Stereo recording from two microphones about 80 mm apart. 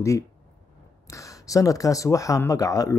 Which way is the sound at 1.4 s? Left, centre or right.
Left.